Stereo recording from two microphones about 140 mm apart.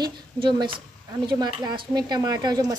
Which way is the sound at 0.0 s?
35° right (ahead or behind).